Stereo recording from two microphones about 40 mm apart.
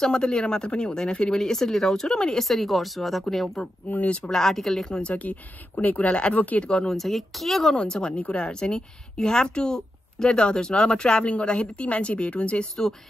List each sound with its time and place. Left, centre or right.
0.0 s a woman's voice: centre
1.4 s speech: centre
3.9 s speech: left
4.5 s speech: centre
5.0 s a woman's voice: left
6.0 s a woman's voice: left
6.3 s a woman's voice: left
6.9 s speech: centre
7.7 s a woman's voice: left